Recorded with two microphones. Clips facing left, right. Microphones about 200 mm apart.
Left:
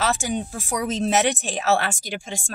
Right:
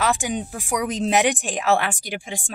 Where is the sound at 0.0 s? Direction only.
15° right (ahead or behind).